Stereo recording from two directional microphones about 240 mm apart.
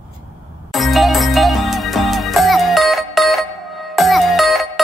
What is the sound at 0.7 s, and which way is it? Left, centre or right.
Music, centre.